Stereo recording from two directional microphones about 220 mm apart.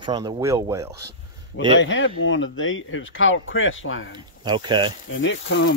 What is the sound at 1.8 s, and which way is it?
Speech, 55° left (ahead or behind).